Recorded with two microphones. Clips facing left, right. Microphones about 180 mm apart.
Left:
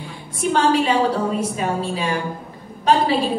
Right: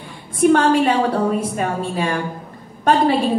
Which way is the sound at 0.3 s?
55° right (ahead or behind).